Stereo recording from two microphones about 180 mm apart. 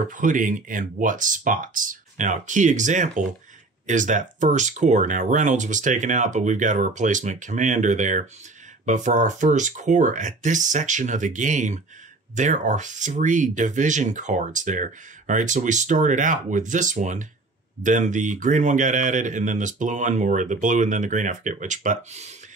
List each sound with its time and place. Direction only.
0.1 s speech: 45° right (ahead or behind)